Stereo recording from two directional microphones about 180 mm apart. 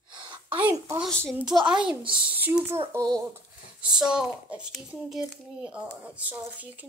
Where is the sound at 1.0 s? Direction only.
5° left (ahead or behind); by 3.4 s 15° right (ahead or behind).